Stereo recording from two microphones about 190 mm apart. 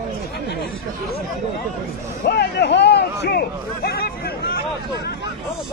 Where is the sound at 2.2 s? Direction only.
60° left (ahead or behind).